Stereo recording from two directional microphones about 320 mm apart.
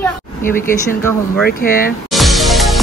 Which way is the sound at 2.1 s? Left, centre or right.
Centre.